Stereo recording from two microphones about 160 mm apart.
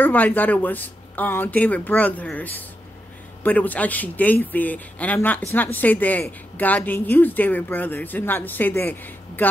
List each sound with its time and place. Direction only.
0.0 s a woman's voice: 10° left (ahead or behind)